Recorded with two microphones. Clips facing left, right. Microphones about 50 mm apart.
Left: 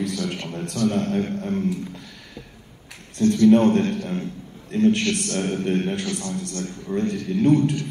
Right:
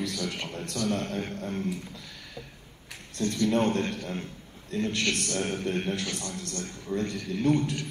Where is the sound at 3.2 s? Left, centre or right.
Left.